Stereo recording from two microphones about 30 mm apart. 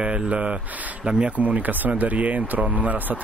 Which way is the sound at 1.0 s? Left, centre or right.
Right.